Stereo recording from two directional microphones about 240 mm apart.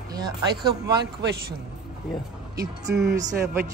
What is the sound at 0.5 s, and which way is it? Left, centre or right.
Speech, right.